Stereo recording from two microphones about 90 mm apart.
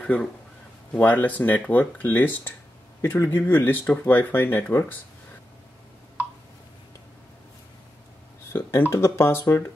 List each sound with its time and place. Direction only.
0.0 s speech: 15° left (ahead or behind)
8.5 s speech: 25° left (ahead or behind)